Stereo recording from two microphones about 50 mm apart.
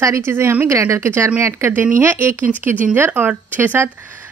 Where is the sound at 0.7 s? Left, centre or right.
Right.